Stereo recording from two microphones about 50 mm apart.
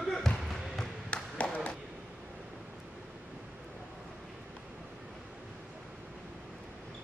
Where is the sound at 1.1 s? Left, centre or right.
Left.